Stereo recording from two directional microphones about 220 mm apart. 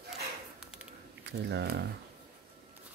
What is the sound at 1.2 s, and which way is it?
Speech, 50° right (ahead or behind).